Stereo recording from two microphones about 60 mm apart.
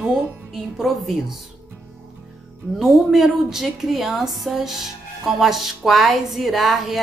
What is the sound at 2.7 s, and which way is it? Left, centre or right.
A woman's voice, centre.